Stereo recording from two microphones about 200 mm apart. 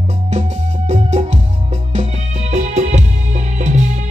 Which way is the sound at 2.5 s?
35° right (ahead or behind).